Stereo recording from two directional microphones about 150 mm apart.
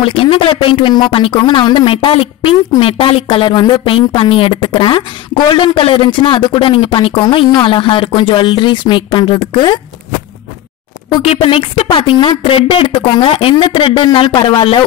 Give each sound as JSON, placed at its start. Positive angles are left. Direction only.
{"t": 0.0, "sound": "a woman's voice", "side_deg": 35}
{"t": 11.2, "sound": "a woman's voice", "side_deg": 40}